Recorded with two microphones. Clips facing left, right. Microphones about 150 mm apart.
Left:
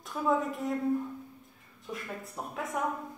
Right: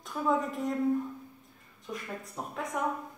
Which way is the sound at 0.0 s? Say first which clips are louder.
Even; centre (ahead or behind).